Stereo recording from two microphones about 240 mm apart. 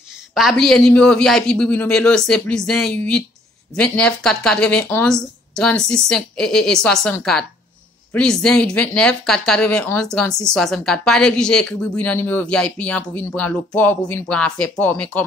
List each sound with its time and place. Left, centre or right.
0.3 s speech: centre